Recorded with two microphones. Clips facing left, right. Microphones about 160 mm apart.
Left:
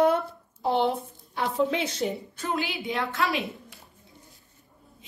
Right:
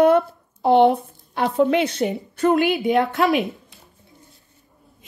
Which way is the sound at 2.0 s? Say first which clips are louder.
Right 6 dB; 75° right (ahead or behind).